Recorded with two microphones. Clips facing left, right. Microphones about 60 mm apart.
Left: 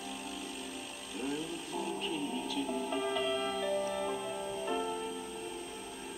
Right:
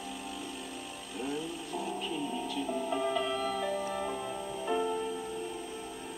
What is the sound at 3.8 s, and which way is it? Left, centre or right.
Music, centre.